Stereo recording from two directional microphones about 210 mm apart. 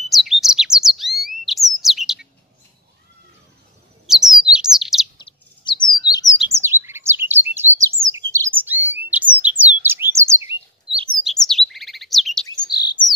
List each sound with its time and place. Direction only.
0.1 s bird: centre (ahead or behind)
4.1 s bird: centre (ahead or behind)
5.1 s bird: 20° left (ahead or behind)
6.5 s chirp: 10° right (ahead or behind)
10.9 s bird: 25° right (ahead or behind)
11.2 s chirp: centre (ahead or behind)
12.6 s chirp: 20° left (ahead or behind)